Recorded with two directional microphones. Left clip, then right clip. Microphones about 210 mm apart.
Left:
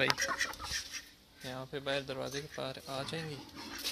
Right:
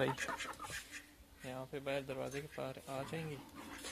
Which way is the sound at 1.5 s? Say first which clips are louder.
Left 4 dB; centre (ahead or behind).